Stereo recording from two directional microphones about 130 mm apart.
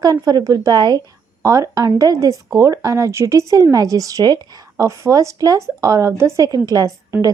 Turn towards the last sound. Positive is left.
turn(degrees=-25)  # may be behind; listen again after turning